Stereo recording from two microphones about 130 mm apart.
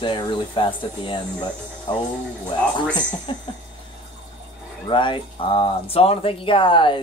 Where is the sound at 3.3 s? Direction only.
40° left (ahead or behind).